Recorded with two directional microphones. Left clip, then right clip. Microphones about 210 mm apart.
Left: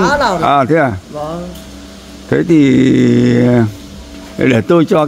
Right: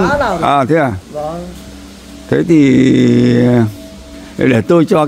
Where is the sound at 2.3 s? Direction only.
5° right (ahead or behind).